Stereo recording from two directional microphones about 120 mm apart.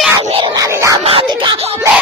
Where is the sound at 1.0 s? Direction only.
55° right (ahead or behind).